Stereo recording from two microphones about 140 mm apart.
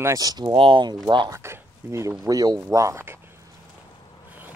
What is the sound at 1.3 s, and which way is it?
Speech, 20° right (ahead or behind).